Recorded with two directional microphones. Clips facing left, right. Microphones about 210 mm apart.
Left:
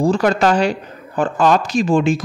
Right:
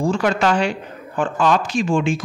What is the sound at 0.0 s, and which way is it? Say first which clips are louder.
Speech: left 3 dB; 35° left (ahead or behind).